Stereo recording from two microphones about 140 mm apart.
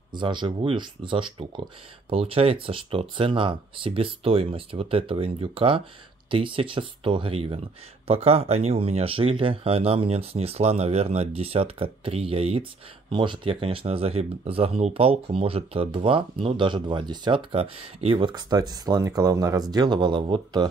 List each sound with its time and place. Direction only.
0.1 s speech: 35° right (ahead or behind)